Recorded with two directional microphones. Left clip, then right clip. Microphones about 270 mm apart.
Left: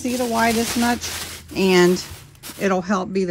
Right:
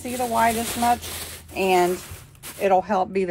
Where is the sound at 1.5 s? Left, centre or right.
Left.